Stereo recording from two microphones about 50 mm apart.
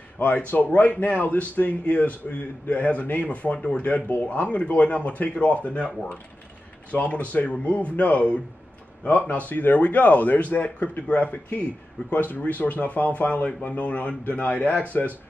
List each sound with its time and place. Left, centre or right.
0.7 s a man's voice: left
6.9 s a man's voice: left